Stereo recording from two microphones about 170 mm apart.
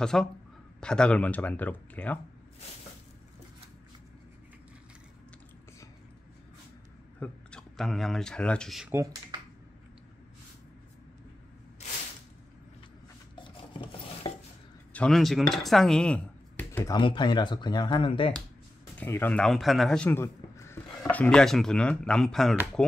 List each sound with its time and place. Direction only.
0.0 s speech: 5° left (ahead or behind)
7.2 s speech: 5° left (ahead or behind)
8.9 s speech: 20° right (ahead or behind)
13.4 s stir: 30° left (ahead or behind)
14.9 s speech: 5° left (ahead or behind)
16.9 s speech: 30° left (ahead or behind)
18.9 s a man's voice: 10° left (ahead or behind)